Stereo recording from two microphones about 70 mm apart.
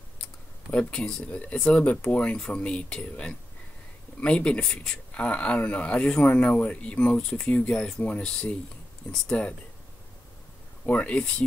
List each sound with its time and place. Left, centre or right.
0.2 s speech: centre
10.9 s speech: centre